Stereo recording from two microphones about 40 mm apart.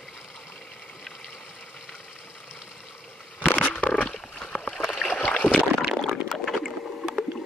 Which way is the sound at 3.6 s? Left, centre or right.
Left.